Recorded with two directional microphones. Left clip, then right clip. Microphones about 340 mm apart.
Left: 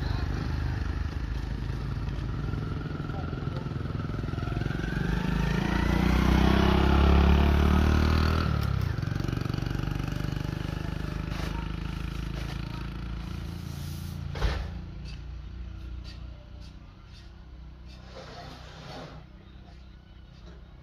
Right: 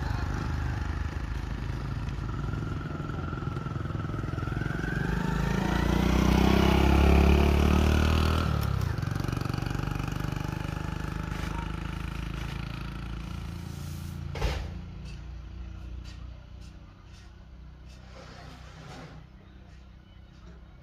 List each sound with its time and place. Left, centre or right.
0.0 s vehicle: centre
3.1 s motorcycle: centre
14.3 s vehicle: right